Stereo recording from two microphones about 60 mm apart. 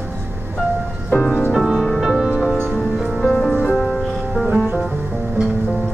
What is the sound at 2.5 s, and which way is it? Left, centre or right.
Music, centre.